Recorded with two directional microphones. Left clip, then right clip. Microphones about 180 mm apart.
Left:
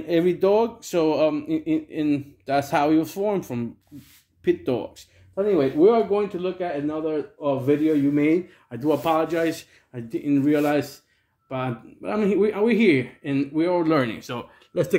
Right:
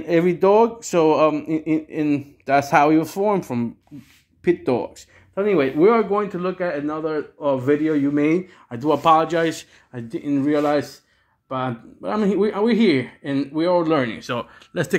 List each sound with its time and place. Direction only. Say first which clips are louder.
0.0 s a man's voice: right 3 dB; 10° right (ahead or behind)
10.0 s speech: even; centre (ahead or behind)
14.2 s speech: right 6 dB; 20° right (ahead or behind)